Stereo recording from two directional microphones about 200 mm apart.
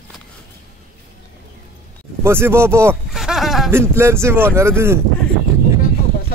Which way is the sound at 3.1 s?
Centre (ahead or behind).